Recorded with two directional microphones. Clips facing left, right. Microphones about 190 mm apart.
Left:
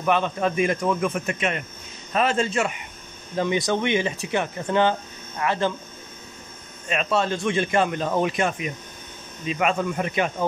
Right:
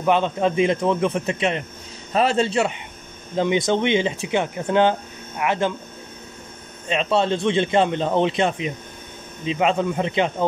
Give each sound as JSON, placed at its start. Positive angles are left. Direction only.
{"t": 0.0, "sound": "a man's voice", "side_deg": -20}
{"t": 6.9, "sound": "a man's voice", "side_deg": -25}